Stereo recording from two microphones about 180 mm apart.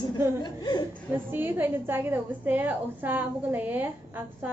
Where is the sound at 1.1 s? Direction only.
10° right (ahead or behind).